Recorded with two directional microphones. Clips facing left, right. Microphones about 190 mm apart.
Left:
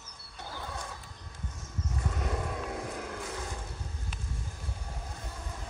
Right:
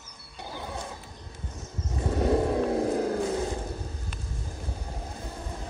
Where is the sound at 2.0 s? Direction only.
30° right (ahead or behind).